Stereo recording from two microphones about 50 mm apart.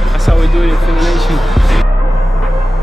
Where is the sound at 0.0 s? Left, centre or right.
Centre.